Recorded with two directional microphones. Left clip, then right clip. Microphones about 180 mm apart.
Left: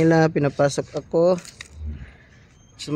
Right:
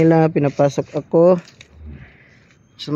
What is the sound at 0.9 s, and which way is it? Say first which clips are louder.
Speech: right 7 dB; 20° right (ahead or behind).